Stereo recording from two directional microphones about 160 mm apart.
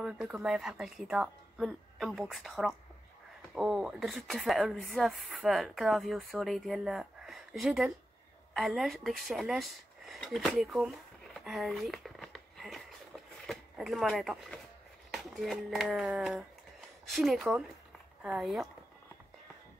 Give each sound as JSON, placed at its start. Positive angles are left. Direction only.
{"t": 0.0, "sound": "speech", "side_deg": -5}
{"t": 11.3, "sound": "a sound", "side_deg": 0}
{"t": 15.0, "sound": "speech", "side_deg": 0}